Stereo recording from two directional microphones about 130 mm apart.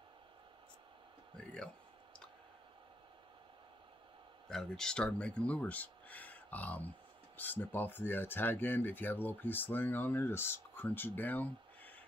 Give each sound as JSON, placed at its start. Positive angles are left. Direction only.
{"t": 4.5, "sound": "speech", "side_deg": 5}